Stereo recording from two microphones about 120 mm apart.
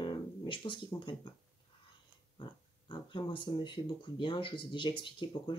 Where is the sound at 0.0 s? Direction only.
45° left (ahead or behind).